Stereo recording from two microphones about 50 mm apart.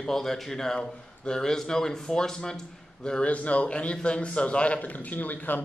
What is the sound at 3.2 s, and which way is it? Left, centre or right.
A man's voice, left.